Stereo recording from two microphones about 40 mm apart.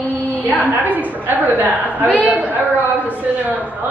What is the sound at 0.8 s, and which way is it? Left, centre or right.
A woman's voice, right.